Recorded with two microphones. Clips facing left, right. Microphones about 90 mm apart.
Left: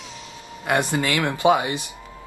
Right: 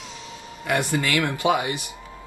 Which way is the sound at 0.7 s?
20° left (ahead or behind).